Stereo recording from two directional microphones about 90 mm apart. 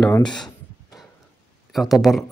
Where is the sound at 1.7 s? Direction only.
Centre (ahead or behind).